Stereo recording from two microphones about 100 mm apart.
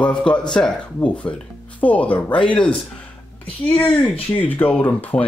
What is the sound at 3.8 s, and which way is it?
Speech, 15° left (ahead or behind).